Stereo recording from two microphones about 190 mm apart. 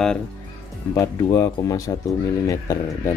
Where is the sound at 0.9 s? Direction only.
20° left (ahead or behind).